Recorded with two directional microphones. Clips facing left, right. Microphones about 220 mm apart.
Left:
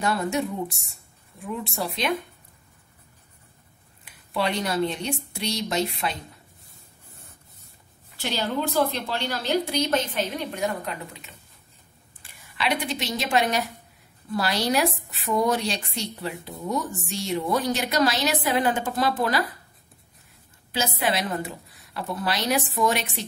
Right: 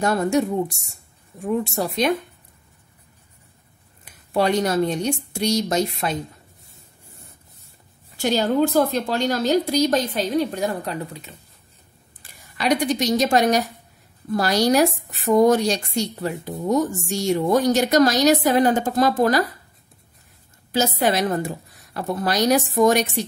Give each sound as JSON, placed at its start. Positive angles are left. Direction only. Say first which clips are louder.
{"t": 0.0, "sound": "speech", "louder": "right 6 dB", "side_deg": -45}
{"t": 4.0, "sound": "speech", "louder": "right 6 dB", "side_deg": -45}
{"t": 8.2, "sound": "a woman's voice", "louder": "right 8 dB", "side_deg": -45}
{"t": 20.7, "sound": "speech", "louder": "right 6 dB", "side_deg": -45}